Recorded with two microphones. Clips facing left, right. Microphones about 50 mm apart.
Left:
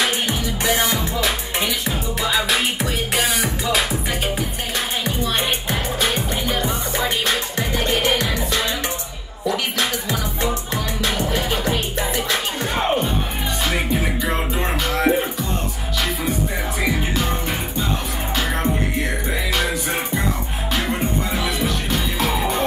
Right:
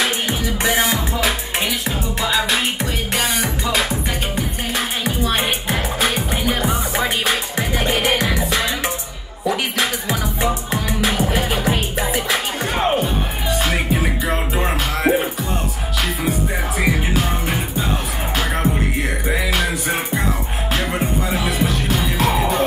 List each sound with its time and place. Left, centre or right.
0.8 s music: centre
1.7 s music: centre
4.7 s music: centre
12.6 s music: centre
15.0 s music: centre
19.5 s music: centre
21.3 s music: centre